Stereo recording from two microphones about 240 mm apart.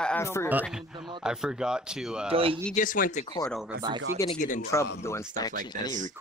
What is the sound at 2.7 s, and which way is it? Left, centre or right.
Speech, left.